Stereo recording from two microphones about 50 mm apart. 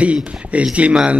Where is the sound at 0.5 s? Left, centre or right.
Right.